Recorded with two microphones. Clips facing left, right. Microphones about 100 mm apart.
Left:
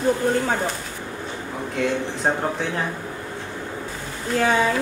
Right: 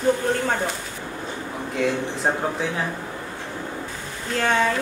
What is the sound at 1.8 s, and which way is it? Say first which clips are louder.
Speech: even; centre (ahead or behind).